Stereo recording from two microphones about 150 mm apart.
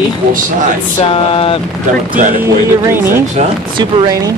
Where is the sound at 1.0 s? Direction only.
35° left (ahead or behind).